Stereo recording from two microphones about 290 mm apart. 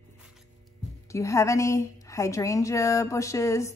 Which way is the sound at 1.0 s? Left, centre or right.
Centre.